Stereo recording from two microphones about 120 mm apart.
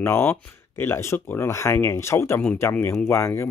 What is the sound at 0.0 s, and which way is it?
Speech, 20° left (ahead or behind).